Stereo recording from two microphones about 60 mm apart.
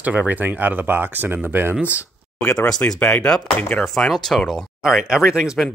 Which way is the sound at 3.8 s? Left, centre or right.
Centre.